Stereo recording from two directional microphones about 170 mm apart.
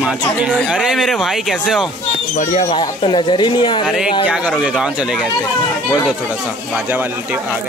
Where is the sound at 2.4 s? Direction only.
45° left (ahead or behind).